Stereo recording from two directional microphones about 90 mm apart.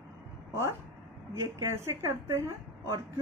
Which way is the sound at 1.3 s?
30° right (ahead or behind).